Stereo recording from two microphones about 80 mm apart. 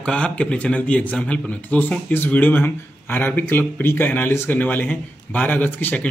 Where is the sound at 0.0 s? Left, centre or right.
Centre.